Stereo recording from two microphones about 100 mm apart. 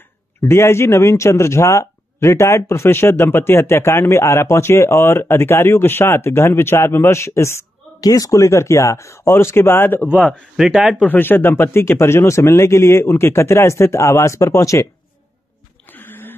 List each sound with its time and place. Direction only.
0.5 s a man's voice: 25° left (ahead or behind)
10.5 s speech: 5° right (ahead or behind)
11.1 s a man's voice: 20° left (ahead or behind)
15.9 s a sound: 20° left (ahead or behind)